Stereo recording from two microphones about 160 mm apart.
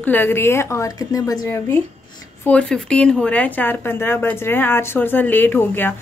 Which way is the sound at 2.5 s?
5° left (ahead or behind).